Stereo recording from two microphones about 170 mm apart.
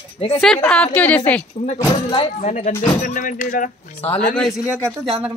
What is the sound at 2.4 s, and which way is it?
Speech, 45° left (ahead or behind).